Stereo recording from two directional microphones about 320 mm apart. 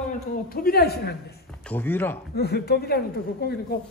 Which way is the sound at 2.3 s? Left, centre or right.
Left.